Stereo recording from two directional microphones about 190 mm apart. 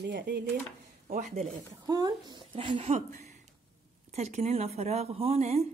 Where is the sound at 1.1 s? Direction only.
45° right (ahead or behind).